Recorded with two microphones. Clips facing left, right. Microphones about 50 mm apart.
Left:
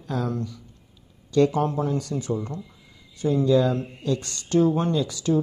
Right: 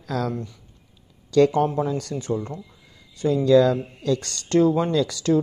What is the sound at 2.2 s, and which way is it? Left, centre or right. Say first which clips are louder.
Speech: right 1 dB; right.